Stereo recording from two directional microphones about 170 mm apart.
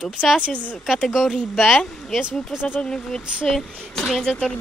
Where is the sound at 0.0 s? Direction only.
Centre (ahead or behind).